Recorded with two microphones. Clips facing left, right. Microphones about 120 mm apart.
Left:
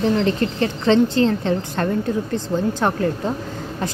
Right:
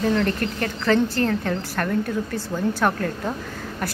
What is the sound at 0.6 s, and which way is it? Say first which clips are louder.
A woman's voice: left 4 dB; 20° left (ahead or behind).